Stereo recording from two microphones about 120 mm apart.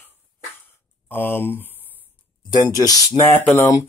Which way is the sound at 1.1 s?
15° left (ahead or behind).